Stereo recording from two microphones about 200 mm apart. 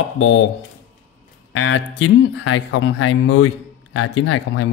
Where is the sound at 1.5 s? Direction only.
70° left (ahead or behind).